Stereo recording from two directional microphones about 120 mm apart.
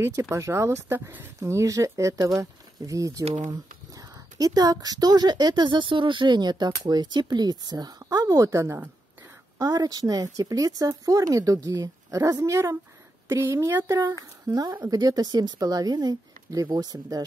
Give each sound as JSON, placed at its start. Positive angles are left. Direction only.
{"t": 0.0, "sound": "speech", "side_deg": -25}
{"t": 1.4, "sound": "speech", "side_deg": -25}